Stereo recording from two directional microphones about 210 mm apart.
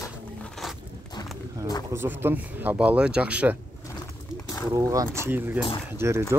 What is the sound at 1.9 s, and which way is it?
Speech, 10° right (ahead or behind).